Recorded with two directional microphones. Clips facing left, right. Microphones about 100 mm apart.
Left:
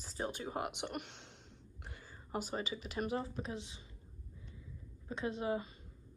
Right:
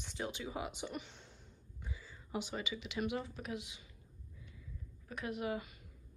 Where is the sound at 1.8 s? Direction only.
65° left (ahead or behind).